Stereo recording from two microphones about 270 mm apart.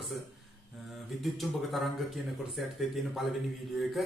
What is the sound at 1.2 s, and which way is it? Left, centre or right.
A man's voice, centre.